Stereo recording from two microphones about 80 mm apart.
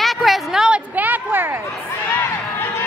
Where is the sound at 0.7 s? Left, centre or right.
Right.